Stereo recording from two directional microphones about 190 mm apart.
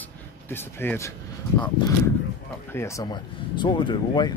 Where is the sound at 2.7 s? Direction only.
15° left (ahead or behind).